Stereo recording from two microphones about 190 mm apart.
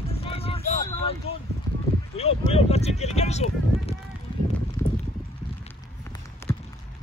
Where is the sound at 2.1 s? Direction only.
30° left (ahead or behind).